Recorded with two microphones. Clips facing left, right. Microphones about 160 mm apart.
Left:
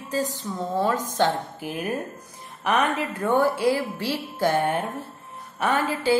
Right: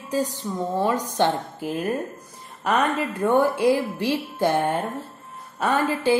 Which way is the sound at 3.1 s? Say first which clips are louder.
Right 2 dB; 10° right (ahead or behind).